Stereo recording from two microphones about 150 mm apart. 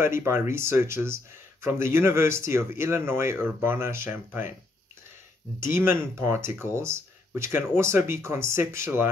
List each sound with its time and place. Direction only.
0.0 s speech: 15° right (ahead or behind)
5.6 s speech: 15° right (ahead or behind)